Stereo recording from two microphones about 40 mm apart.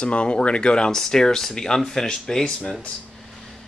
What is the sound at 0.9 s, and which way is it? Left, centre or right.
Speech, centre.